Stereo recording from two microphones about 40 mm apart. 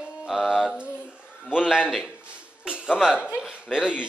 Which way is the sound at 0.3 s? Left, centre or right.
Centre.